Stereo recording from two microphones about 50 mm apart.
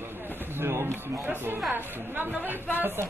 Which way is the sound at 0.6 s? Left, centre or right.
Right.